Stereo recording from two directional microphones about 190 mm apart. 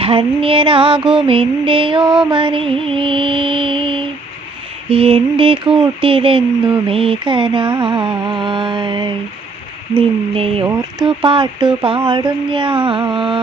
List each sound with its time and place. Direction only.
0.0 s mantra: 30° right (ahead or behind)